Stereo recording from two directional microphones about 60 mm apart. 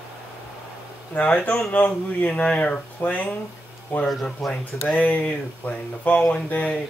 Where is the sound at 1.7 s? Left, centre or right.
Left.